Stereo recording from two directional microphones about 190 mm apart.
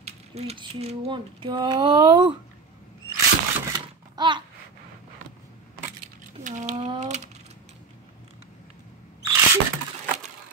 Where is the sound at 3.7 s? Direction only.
25° right (ahead or behind).